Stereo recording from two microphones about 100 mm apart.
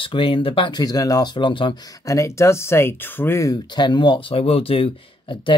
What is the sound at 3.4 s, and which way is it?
Speech, 40° left (ahead or behind).